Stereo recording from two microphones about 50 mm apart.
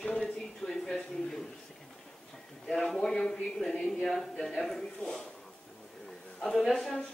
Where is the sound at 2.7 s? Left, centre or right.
Centre.